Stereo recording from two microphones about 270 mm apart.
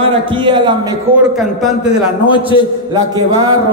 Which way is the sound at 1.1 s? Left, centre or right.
Centre.